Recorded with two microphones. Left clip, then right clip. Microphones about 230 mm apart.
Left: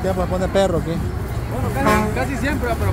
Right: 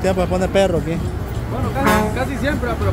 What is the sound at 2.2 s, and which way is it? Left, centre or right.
Speech, centre.